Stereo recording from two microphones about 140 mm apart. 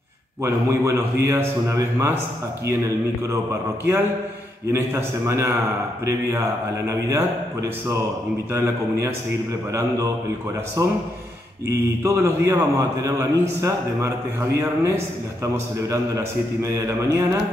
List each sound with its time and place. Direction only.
0.4 s a man's voice: 20° right (ahead or behind)
4.7 s a man's voice: 20° right (ahead or behind)
6.9 s a man's voice: 20° right (ahead or behind)
15.9 s a man's voice: 25° right (ahead or behind)